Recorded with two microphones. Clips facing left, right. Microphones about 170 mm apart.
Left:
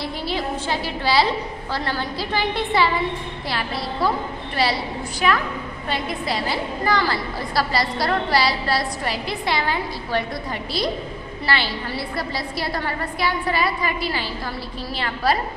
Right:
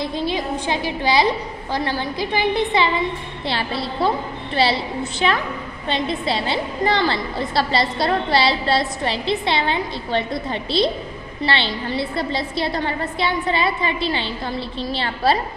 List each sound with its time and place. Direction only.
0.0 s a woman's voice: 20° right (ahead or behind)